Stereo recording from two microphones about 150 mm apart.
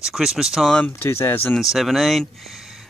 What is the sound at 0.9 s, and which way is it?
Speech, 15° left (ahead or behind).